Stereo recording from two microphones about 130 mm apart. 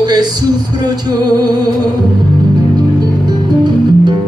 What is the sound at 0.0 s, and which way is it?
Music, 30° right (ahead or behind).